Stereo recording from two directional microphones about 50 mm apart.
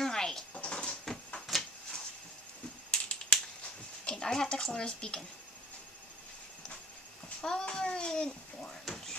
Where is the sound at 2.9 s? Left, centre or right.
Centre.